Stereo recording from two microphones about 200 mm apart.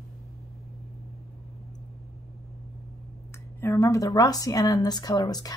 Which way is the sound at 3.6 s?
15° left (ahead or behind).